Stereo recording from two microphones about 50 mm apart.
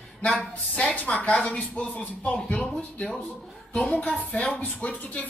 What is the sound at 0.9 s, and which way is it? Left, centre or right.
Speech, left.